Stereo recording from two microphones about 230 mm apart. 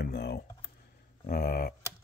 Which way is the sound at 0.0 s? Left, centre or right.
Left.